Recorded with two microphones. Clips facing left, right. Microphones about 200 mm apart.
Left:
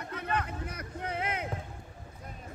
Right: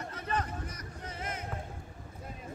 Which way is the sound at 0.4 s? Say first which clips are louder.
Left 1 dB; 60° left (ahead or behind).